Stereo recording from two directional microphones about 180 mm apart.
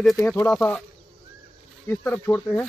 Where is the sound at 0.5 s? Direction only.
Centre (ahead or behind).